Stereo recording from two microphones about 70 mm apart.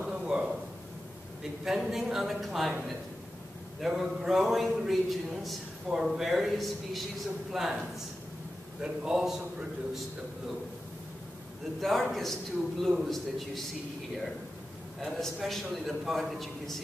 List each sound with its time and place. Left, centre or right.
0.1 s a sound: centre
1.6 s a man's voice: centre
3.8 s a man's voice: centre
11.8 s a man's voice: centre
15.0 s a man's voice: centre